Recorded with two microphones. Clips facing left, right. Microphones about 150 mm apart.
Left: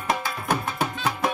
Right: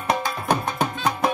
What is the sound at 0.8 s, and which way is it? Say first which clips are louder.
Music: right 3 dB; 35° right (ahead or behind).